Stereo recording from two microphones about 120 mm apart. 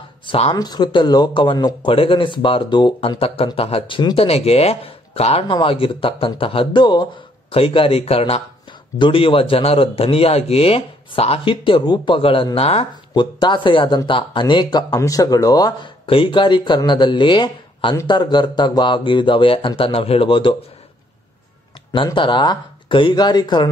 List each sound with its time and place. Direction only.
0.5 s a man's voice: 35° left (ahead or behind)
7.5 s speech: 50° left (ahead or behind)
8.9 s a man's voice: 45° left (ahead or behind)
13.1 s speech: 40° left (ahead or behind)
16.1 s a man's voice: 45° left (ahead or behind)
21.9 s speech: 45° left (ahead or behind)